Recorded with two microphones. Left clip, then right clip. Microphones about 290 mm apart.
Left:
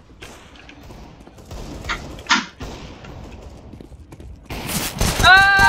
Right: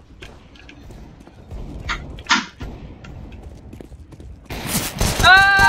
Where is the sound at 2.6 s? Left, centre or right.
Left.